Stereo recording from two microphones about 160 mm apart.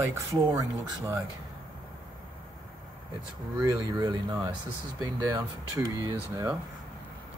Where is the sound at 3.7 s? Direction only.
25° right (ahead or behind).